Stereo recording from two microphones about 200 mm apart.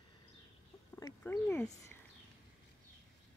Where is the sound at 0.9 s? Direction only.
10° left (ahead or behind).